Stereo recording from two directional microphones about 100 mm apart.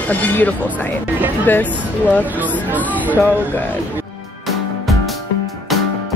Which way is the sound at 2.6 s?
15° right (ahead or behind).